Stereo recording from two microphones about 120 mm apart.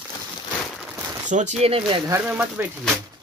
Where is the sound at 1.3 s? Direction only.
85° right.